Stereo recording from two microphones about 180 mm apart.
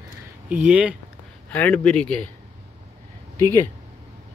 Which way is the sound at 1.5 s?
10° left (ahead or behind).